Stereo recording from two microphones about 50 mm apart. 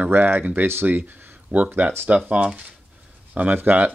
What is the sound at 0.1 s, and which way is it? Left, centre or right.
Speech, right.